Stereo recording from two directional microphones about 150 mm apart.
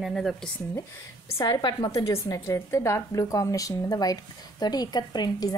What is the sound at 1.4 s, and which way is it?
A woman's voice, 30° left (ahead or behind).